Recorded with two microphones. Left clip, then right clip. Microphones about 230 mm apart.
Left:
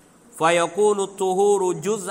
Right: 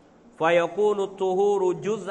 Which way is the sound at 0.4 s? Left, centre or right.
Left.